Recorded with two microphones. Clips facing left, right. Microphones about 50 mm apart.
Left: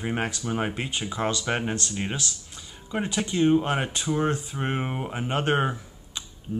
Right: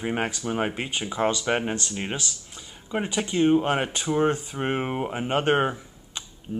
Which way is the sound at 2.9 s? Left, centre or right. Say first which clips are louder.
Right 1 dB; right.